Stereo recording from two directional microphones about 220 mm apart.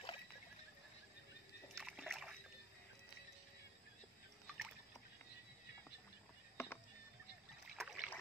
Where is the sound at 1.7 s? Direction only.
Centre (ahead or behind).